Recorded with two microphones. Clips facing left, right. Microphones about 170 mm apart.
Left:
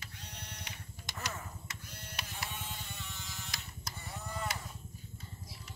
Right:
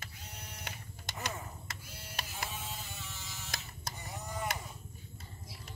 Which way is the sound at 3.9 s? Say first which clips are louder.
Right 1 dB; 15° right (ahead or behind).